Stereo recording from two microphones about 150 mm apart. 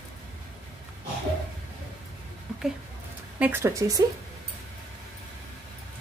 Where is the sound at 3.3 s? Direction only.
10° right (ahead or behind).